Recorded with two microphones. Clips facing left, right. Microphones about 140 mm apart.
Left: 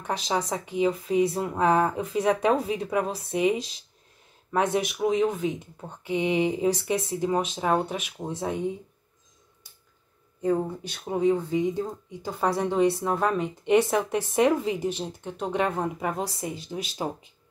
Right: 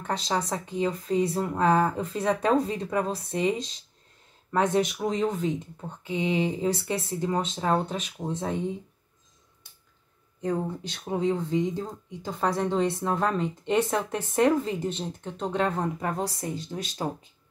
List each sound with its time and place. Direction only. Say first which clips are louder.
0.0 s speech: left 1 dB; 10° left (ahead or behind)
10.4 s speech: left 3 dB; 5° left (ahead or behind)